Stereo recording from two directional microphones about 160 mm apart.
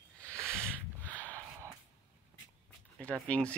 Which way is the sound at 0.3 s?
15° right (ahead or behind).